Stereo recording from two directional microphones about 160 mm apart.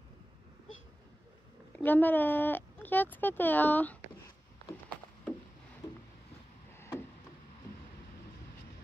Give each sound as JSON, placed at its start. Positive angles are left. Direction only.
{"t": 1.7, "sound": "speech", "side_deg": 10}
{"t": 6.8, "sound": "wood", "side_deg": 15}